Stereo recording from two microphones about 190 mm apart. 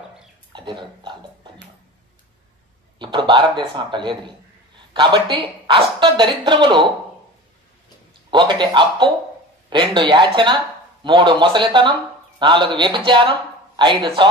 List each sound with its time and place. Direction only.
0.5 s a sound: 25° right (ahead or behind)
3.0 s a man's voice: 25° right (ahead or behind)
8.3 s a woman's voice: 25° right (ahead or behind)